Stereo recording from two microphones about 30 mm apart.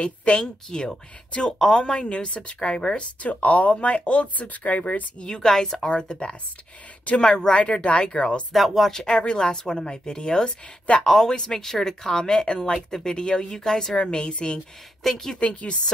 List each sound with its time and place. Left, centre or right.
0.0 s a woman's voice: left
0.7 s a woman's voice: left
3.2 s speech: left
3.8 s speech: left
4.4 s speech: left
5.3 s speech: centre
5.9 s a woman's voice: left
8.0 s a woman's voice: left
8.5 s speech: centre
8.9 s speech: left
12.7 s speech: centre
13.1 s speech: left
15.0 s speech: centre
15.3 s speech: left